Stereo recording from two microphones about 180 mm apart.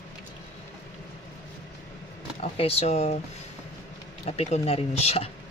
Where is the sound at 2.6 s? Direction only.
35° left (ahead or behind).